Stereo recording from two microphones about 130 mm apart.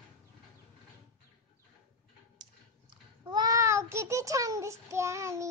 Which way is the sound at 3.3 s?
30° right (ahead or behind).